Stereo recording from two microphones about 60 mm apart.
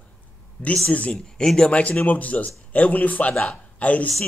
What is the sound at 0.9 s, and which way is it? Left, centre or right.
A man's voice, left.